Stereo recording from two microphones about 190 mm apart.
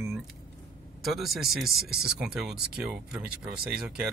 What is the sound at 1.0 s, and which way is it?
Speech, centre (ahead or behind).